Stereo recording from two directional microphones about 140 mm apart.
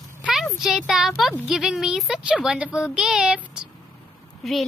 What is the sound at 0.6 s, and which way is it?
A child's voice, centre (ahead or behind).